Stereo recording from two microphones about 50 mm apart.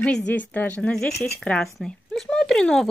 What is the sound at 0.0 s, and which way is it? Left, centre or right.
Speech, centre.